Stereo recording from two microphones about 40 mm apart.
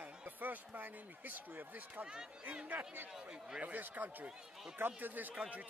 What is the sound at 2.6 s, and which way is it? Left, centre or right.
Speech, right.